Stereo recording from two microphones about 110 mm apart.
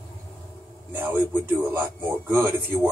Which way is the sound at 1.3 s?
20° right (ahead or behind).